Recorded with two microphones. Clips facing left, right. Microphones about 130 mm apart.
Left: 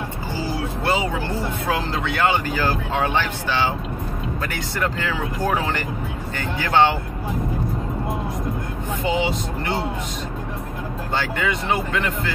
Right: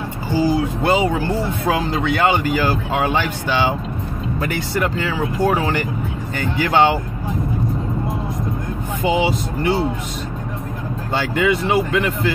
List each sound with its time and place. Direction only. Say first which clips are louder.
0.4 s a sound: right 9 dB; 15° right (ahead or behind)
1.7 s speech: right 5 dB; 15° right (ahead or behind)
9.0 s speech: right 4 dB; 5° right (ahead or behind)
11.1 s speech: right 6 dB; 10° right (ahead or behind)